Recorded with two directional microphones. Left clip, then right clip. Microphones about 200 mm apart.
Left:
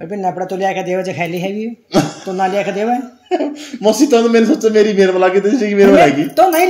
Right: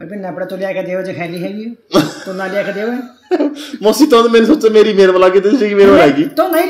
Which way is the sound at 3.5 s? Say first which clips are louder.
Right 1 dB; 40° right (ahead or behind).